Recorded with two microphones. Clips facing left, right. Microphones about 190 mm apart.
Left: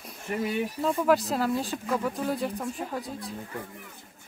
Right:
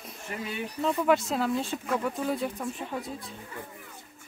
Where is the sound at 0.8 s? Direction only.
5° left (ahead or behind).